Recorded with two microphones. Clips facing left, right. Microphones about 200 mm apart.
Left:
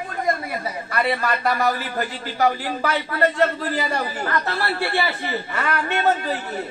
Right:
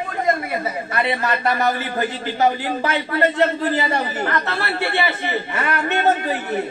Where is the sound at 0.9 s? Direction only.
25° right (ahead or behind).